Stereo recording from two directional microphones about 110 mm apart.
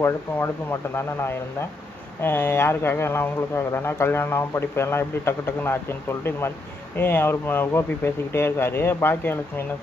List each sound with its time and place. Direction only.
0.0 s speech: 25° left (ahead or behind)